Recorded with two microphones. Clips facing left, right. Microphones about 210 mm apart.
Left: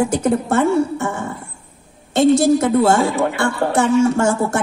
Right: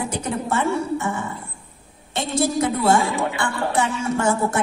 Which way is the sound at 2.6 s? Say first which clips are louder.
Left 4 dB; 45° left (ahead or behind).